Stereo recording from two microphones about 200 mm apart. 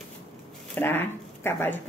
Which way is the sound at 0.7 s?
10° left (ahead or behind).